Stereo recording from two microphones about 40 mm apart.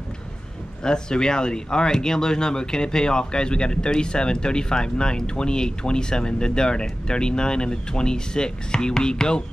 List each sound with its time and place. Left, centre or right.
0.8 s speech: centre